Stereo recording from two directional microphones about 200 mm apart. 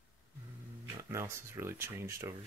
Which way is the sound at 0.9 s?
15° right (ahead or behind).